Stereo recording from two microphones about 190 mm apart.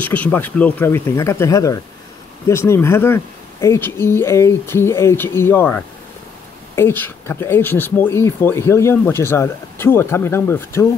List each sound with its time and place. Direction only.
0.0 s speech: 10° left (ahead or behind)